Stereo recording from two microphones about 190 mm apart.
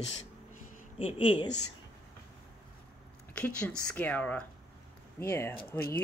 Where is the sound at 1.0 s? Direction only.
30° left (ahead or behind).